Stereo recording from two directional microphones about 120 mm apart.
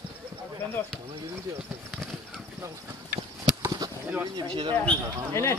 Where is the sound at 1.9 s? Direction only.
Centre (ahead or behind).